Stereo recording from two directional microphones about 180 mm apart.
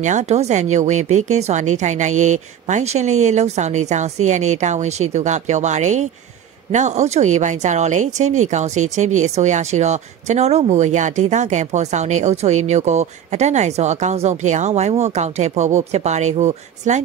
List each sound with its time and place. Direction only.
0.0 s speech: 40° right (ahead or behind)